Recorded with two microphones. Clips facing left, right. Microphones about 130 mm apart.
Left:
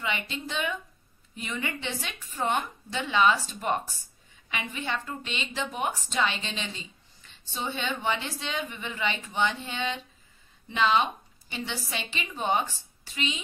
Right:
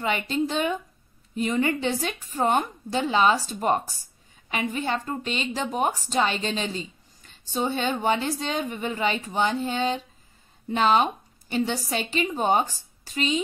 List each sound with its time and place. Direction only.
0.0 s a woman's voice: 40° right (ahead or behind)